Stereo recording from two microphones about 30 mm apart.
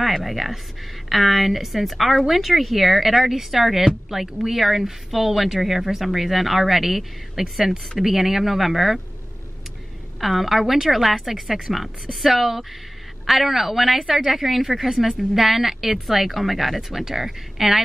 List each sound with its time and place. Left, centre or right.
0.0 s a woman's voice: centre
10.2 s a woman's voice: centre